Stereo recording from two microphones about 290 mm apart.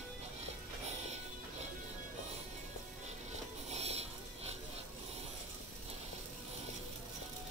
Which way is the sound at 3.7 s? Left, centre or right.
Right.